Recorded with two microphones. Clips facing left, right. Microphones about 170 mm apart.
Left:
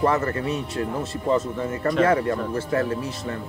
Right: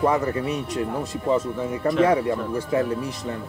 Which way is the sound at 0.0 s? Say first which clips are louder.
Right 1 dB; 10° right (ahead or behind).